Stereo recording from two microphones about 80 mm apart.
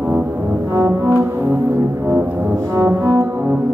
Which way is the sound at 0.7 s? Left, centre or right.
Right.